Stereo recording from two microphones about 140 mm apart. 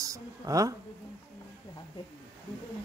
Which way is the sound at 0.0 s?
25° right (ahead or behind).